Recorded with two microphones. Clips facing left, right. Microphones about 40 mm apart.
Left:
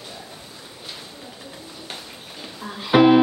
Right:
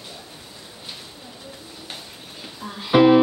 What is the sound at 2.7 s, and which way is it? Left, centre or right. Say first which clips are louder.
Music: even; centre.